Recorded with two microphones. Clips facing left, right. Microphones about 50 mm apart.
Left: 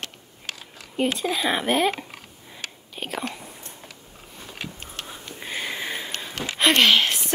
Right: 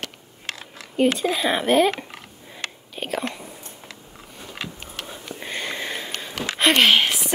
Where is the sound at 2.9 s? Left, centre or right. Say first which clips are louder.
Right 3 dB; centre.